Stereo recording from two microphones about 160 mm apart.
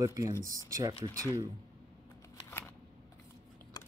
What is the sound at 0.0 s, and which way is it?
Speech, 20° right (ahead or behind).